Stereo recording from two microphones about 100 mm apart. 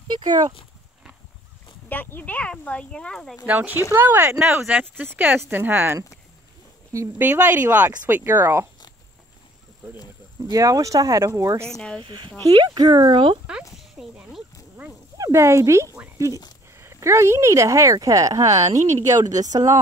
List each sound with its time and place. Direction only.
0.1 s speech: 45° right (ahead or behind)
1.9 s speech: 20° left (ahead or behind)
3.4 s speech: 15° right (ahead or behind)
7.2 s speech: 15° right (ahead or behind)
10.5 s speech: 35° right (ahead or behind)
11.6 s speech: 10° left (ahead or behind)
12.0 s speech: 50° right (ahead or behind)
13.7 s a sound: 5° right (ahead or behind)
15.1 s speech: 30° right (ahead or behind)